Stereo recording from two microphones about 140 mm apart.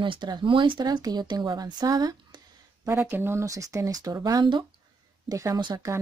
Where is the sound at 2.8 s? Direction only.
15° right (ahead or behind).